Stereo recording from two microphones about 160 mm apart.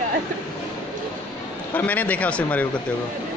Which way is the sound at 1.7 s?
10° left (ahead or behind).